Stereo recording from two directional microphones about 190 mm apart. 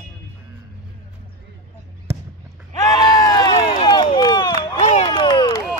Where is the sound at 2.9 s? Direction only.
20° left (ahead or behind).